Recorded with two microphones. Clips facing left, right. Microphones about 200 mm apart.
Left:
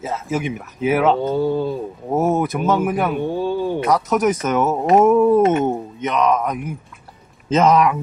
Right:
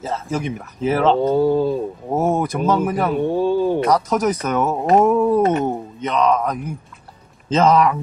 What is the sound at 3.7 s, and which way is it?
Speech, centre (ahead or behind).